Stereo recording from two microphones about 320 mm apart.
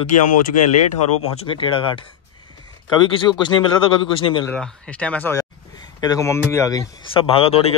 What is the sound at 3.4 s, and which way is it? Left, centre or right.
Speech, centre.